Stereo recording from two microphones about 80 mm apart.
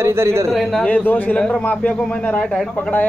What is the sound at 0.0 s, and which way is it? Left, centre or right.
Speech, right.